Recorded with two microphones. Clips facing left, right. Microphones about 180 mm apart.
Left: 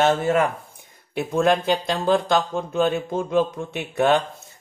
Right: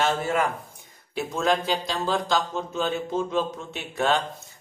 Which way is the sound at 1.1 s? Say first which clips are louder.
Left 5 dB; 60° left (ahead or behind).